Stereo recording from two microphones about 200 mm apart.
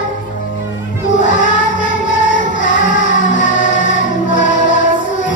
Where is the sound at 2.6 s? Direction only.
40° left (ahead or behind).